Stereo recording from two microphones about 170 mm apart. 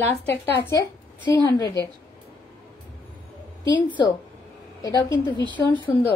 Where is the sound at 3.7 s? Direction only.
30° left (ahead or behind).